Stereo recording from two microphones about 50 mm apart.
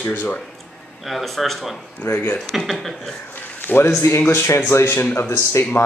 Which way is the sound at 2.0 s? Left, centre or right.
Left.